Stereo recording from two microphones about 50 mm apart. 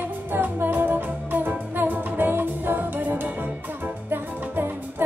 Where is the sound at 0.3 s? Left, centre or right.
Right.